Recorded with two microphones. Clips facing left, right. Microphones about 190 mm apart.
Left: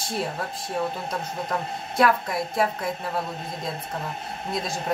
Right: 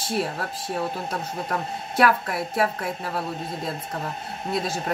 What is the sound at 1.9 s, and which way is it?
A woman's voice, centre (ahead or behind).